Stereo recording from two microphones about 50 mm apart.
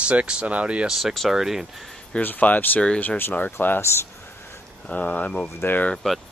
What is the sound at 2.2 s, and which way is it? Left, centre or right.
Speech, left.